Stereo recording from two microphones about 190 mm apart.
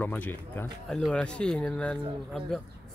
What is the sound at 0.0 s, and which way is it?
Speech, 10° left (ahead or behind).